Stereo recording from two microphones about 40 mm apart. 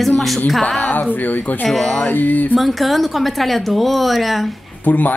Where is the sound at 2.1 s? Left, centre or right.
Left.